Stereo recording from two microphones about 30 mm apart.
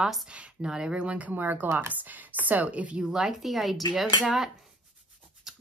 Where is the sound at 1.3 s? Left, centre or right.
Right.